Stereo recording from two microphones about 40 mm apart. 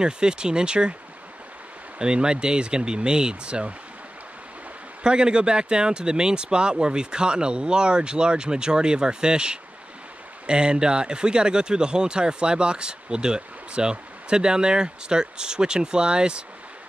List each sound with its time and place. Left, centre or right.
0.0 s speech: right
2.0 s speech: right
5.0 s speech: right